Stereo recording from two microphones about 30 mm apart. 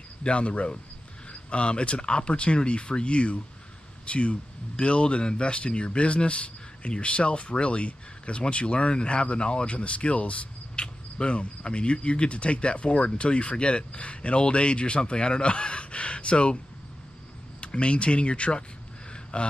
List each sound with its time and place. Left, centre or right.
0.2 s speech: left
10.8 s cricket: left
11.3 s speech: left
17.6 s speech: left